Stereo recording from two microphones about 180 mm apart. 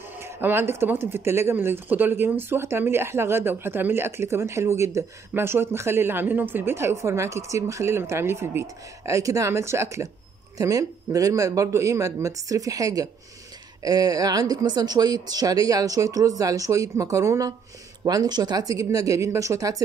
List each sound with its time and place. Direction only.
0.2 s speech: 10° right (ahead or behind)